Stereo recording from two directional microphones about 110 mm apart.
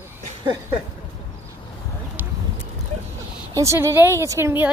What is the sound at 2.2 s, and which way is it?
Clip-clop, 15° right (ahead or behind).